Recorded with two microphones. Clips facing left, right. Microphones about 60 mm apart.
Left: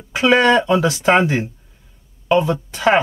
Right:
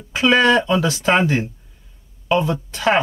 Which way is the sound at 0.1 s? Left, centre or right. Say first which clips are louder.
Left 1 dB; left.